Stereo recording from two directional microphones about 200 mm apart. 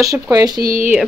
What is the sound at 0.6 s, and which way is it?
Speech, 45° right (ahead or behind).